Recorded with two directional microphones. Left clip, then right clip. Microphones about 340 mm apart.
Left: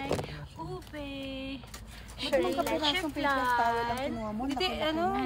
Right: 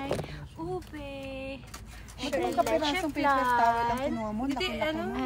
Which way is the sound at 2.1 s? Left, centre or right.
Left.